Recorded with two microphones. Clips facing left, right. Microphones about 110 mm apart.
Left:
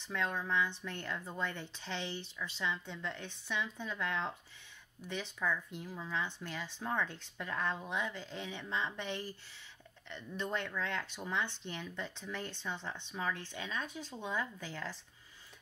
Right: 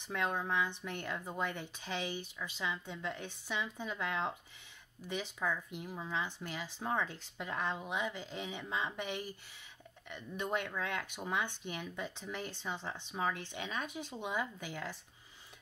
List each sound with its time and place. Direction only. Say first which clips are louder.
0.0 s speech: right 1 dB; 15° right (ahead or behind)